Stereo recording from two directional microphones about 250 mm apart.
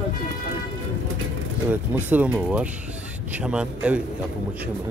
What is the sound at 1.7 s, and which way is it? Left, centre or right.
Speech, centre.